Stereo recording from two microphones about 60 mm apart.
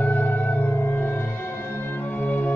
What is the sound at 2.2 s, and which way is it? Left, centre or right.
Music, left.